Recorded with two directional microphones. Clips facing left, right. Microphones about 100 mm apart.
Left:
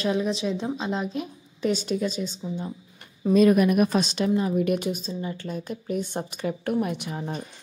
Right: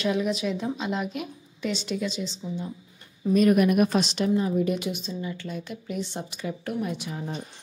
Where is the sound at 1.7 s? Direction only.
45° left (ahead or behind).